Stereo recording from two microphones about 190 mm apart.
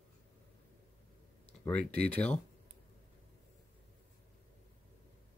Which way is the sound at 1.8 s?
60° right (ahead or behind).